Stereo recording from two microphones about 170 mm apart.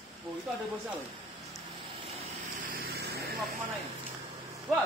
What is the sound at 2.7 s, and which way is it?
Vehicle, 60° right (ahead or behind).